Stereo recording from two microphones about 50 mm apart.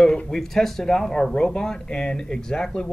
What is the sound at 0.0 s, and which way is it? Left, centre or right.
Speech, centre.